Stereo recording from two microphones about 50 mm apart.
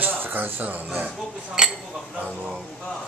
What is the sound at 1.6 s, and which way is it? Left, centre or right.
Speech, centre.